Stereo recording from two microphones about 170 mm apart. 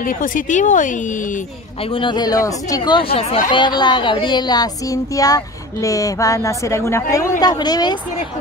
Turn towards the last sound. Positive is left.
turn(degrees=25)  # may be behind; listen again after turning